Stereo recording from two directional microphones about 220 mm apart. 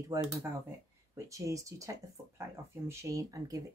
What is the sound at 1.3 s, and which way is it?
Speech, 15° right (ahead or behind).